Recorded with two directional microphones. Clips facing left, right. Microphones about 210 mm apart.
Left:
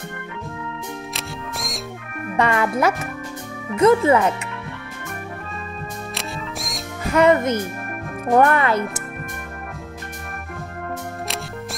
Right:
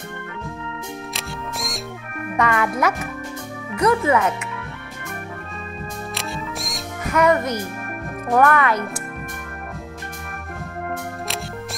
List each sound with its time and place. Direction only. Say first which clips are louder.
1.1 s music: even; centre (ahead or behind)
2.3 s speech: left 1 dB; 30° left (ahead or behind)
6.1 s music: right 2 dB; centre (ahead or behind)
7.1 s speech: left 3 dB; 25° left (ahead or behind)